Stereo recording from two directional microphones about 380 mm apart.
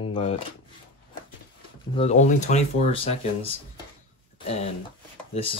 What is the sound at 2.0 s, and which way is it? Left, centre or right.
Speech, centre.